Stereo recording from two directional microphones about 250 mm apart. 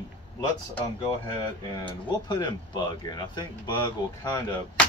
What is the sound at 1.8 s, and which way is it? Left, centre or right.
Speech, centre.